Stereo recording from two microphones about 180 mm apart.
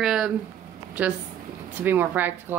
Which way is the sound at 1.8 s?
10° right (ahead or behind).